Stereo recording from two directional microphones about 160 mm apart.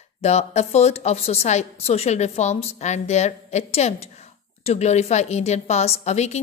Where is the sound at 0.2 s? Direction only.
45° left (ahead or behind).